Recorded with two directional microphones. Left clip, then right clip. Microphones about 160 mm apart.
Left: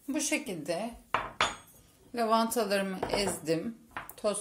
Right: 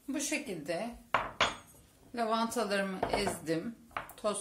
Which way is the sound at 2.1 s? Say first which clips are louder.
Left 4 dB; 30° left (ahead or behind).